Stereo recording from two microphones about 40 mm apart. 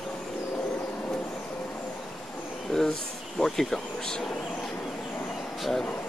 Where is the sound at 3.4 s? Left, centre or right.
Centre.